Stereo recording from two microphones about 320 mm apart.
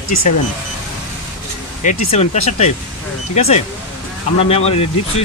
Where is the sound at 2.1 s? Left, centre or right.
Centre.